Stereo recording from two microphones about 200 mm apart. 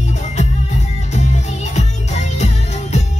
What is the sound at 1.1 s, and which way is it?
Music, 35° left (ahead or behind).